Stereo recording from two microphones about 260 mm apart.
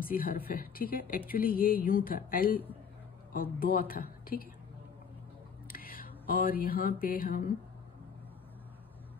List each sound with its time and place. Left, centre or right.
0.0 s speech: left
5.7 s a sound: left
6.6 s speech: left